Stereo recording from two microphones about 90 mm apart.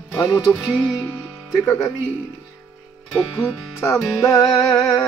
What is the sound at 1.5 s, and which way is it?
Speech, 40° left (ahead or behind).